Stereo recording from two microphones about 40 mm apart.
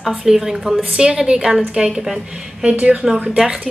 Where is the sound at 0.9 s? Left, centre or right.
Right.